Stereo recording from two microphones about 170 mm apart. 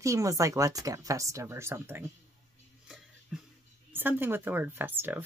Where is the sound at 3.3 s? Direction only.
5° right (ahead or behind).